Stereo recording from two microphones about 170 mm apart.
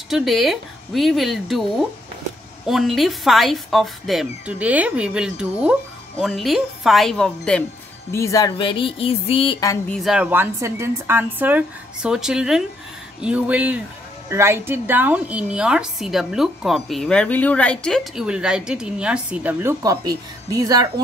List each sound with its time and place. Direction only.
0.1 s a woman's voice: centre (ahead or behind)
8.1 s speech: 20° left (ahead or behind); by 9.6 s 35° left (ahead or behind)
9.8 s a woman's voice: centre (ahead or behind)
13.2 s a sound: 5° right (ahead or behind)
14.3 s a woman's voice: 15° right (ahead or behind)
19.8 s speech: 20° right (ahead or behind)